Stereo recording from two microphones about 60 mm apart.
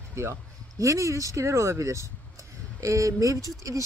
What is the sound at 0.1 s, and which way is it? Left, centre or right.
Speech, right.